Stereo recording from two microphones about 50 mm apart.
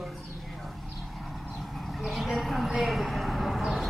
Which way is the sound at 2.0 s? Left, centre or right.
Centre.